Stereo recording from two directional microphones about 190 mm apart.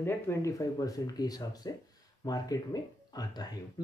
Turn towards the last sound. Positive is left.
turn(degrees=20)  # may be behind; listen again after turning